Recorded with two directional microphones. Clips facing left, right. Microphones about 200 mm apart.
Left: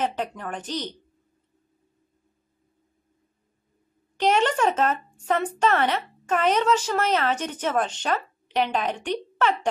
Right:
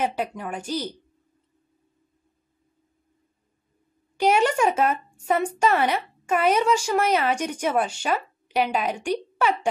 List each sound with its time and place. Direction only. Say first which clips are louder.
0.0 s speech: right 1 dB; 10° right (ahead or behind)
4.2 s speech: right 1 dB; 10° right (ahead or behind)